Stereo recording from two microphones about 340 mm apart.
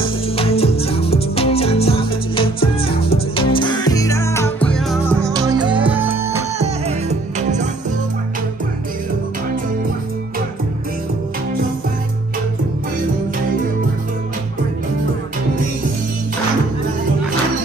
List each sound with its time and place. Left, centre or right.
0.0 s music: centre
6.6 s music: centre